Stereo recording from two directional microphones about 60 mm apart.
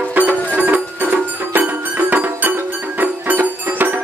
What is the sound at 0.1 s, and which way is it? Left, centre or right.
Music, right.